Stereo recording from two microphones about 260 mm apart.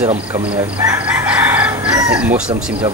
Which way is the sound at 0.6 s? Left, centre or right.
Centre.